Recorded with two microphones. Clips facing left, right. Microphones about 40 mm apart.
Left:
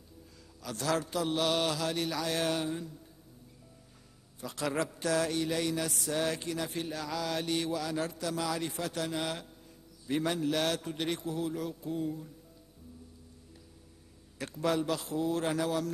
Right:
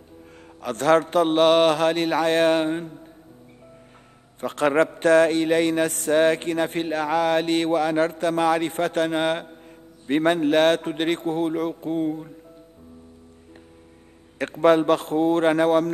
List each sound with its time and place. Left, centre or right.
0.6 s a man's voice: right
4.4 s a man's voice: right
14.4 s a man's voice: right